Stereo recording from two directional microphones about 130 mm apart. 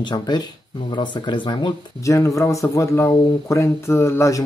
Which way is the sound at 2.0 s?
25° left (ahead or behind).